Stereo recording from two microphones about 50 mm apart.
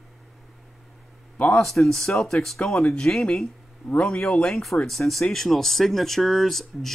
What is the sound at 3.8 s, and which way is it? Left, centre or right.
Speech, left.